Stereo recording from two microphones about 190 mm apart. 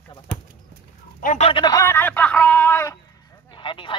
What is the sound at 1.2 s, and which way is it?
Speech, 45° left (ahead or behind).